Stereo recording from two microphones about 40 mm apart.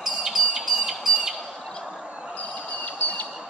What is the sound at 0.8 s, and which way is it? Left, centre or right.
Bird, centre.